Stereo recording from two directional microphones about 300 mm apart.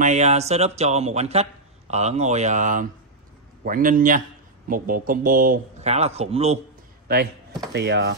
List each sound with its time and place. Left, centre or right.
0.0 s speech: right
7.7 s speech: right